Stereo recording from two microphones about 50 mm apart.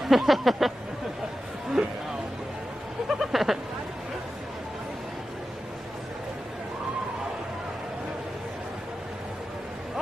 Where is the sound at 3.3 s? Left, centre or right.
Centre.